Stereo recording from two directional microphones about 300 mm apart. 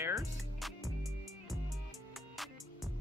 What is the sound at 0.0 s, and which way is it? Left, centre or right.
Music, centre.